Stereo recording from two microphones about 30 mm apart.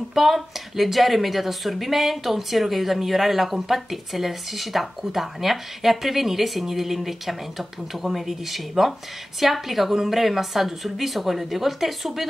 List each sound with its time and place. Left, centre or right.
0.1 s speech: centre